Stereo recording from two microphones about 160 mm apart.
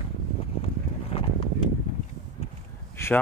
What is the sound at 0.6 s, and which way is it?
Boat, 35° left (ahead or behind).